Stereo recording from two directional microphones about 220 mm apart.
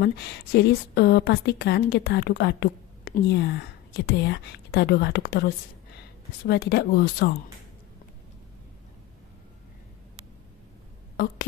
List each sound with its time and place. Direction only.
0.0 s a woman's voice: 50° left (ahead or behind)